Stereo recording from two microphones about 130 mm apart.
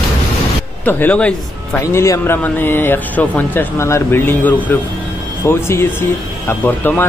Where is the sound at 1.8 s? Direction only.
25° left (ahead or behind).